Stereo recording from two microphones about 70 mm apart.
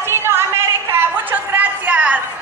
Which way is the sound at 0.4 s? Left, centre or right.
Right.